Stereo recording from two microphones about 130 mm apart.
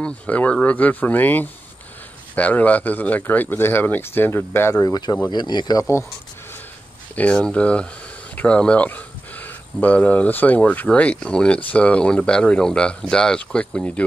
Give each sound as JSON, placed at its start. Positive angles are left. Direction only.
{"t": 0.0, "sound": "speech", "side_deg": 10}
{"t": 4.8, "sound": "speech", "side_deg": 30}
{"t": 7.2, "sound": "speech", "side_deg": 10}